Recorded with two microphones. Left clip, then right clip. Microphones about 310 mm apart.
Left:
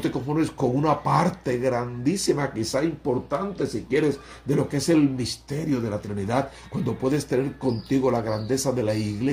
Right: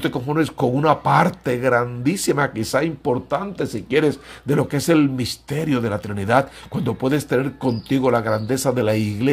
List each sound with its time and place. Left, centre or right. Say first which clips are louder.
0.0 s speech: right 4 dB; right